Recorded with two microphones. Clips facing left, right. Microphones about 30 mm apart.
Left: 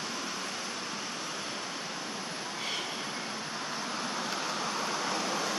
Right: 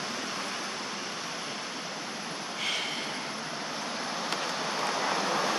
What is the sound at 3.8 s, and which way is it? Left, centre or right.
Vehicle, centre.